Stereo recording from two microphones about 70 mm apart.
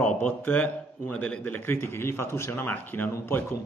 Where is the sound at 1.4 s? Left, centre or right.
Left.